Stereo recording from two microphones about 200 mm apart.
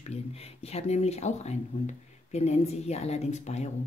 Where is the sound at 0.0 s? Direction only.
30° left (ahead or behind).